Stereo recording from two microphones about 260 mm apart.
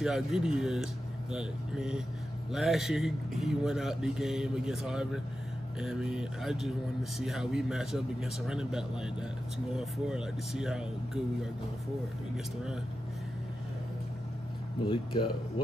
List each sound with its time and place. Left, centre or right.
0.0 s a man's voice: centre
14.9 s speech: centre